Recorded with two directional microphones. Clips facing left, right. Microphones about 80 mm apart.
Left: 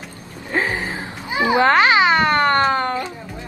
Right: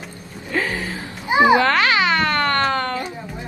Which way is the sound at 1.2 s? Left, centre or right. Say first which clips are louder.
Right 6 dB; right.